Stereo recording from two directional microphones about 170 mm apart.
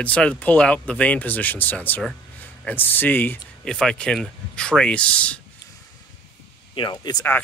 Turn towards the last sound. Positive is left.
turn(degrees=25)  # may be behind; listen again after turning